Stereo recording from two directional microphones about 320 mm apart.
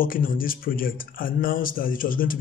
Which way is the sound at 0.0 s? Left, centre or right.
Left.